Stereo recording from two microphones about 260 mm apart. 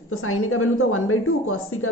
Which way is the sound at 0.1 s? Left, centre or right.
Left.